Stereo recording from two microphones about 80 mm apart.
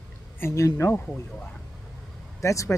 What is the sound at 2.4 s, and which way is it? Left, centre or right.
Speech, left.